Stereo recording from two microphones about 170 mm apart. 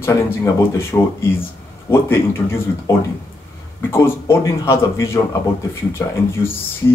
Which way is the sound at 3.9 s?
15° left (ahead or behind).